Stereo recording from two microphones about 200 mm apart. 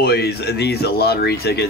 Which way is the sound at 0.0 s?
50° left (ahead or behind).